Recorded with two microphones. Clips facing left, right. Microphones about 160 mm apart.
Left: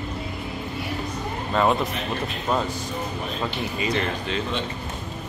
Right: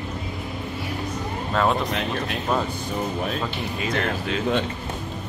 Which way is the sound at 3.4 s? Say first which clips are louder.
Left 1 dB; centre (ahead or behind).